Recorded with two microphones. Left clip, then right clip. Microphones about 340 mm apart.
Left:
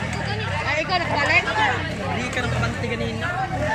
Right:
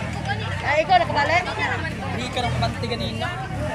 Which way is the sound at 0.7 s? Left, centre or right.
Right.